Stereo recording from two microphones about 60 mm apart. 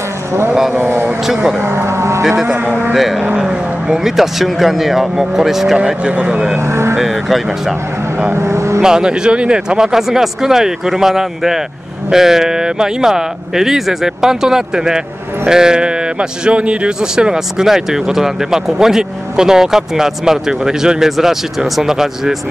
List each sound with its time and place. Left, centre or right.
0.7 s speech: right
1.0 s speech: centre
1.6 s vehicle: right
2.4 s speech: right
2.9 s speech: centre
5.8 s speech: centre
6.5 s speech: right
7.0 s speech: centre
8.3 s speech: right
8.8 s speech: centre